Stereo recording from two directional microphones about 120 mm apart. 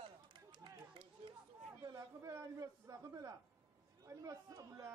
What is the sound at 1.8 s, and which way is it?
A man's voice, 30° right (ahead or behind).